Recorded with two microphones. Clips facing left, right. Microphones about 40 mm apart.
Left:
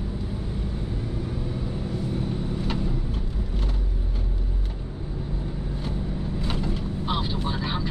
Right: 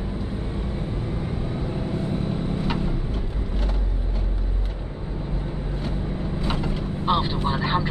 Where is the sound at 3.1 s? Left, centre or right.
Centre.